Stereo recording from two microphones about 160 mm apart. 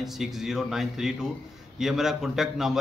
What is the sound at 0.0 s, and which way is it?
Speech, centre (ahead or behind).